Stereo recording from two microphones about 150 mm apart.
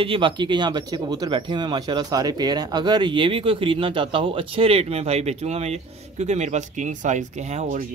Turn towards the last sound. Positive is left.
turn(degrees=-55)  # may be behind; listen again after turning